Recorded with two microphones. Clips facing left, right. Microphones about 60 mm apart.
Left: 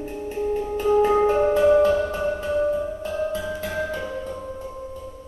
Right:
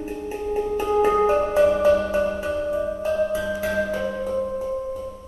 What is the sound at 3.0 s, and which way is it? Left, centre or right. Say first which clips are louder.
Music: right 4 dB; centre.